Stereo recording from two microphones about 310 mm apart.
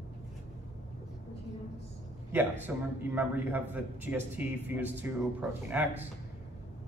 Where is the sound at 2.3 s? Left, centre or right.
Centre.